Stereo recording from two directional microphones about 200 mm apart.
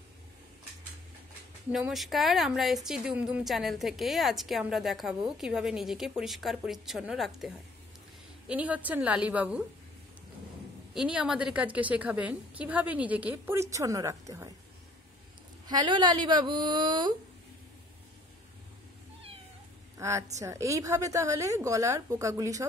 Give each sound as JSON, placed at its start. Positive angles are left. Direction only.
{"t": 1.7, "sound": "a woman's voice", "side_deg": 0}
{"t": 11.0, "sound": "a woman's voice", "side_deg": -5}
{"t": 15.6, "sound": "a woman's voice", "side_deg": -20}
{"t": 20.0, "sound": "a woman's voice", "side_deg": -15}